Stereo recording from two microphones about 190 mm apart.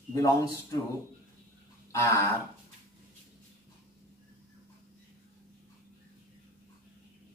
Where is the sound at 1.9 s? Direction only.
15° left (ahead or behind).